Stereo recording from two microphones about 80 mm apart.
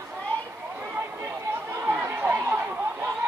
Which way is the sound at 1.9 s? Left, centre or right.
Centre.